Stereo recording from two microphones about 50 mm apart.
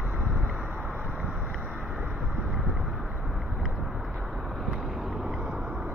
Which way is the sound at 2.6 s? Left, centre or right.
Centre.